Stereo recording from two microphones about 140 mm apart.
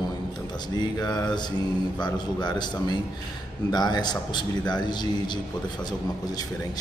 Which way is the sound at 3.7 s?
30° left (ahead or behind).